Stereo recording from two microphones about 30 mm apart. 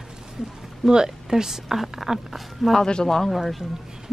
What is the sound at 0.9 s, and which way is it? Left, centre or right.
A woman's voice, right.